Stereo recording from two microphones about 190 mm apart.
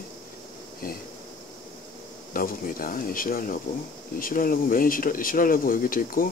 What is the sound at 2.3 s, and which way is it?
Speech, 50° left (ahead or behind).